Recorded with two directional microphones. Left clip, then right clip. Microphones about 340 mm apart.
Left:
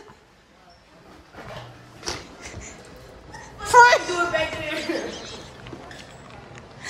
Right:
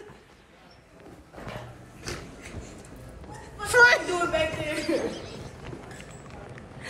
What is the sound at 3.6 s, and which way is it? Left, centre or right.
Speech, centre.